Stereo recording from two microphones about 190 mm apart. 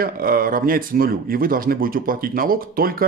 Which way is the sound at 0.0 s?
50° right (ahead or behind).